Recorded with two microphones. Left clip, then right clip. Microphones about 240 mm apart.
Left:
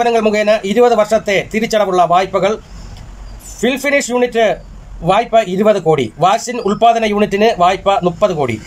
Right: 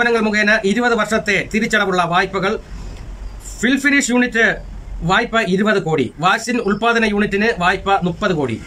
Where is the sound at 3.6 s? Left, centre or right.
Centre.